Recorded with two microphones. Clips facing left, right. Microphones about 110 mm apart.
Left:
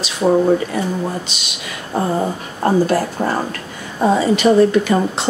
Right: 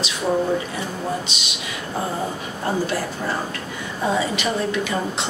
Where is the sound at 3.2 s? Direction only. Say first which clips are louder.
Left 6 dB; 50° left (ahead or behind).